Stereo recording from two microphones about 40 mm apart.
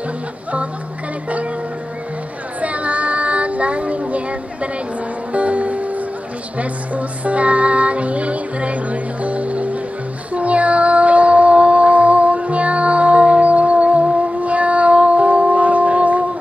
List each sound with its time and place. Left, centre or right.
2.6 s child singing: right
5.3 s music: right